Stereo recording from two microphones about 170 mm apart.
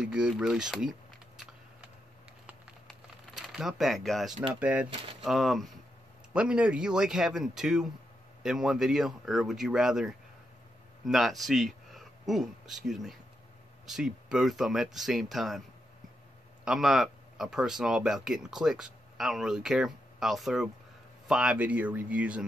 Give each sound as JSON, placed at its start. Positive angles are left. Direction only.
{"t": 0.0, "sound": "speech", "side_deg": -5}
{"t": 2.9, "sound": "a sound", "side_deg": -5}
{"t": 4.6, "sound": "speech", "side_deg": -5}
{"t": 16.6, "sound": "speech", "side_deg": -5}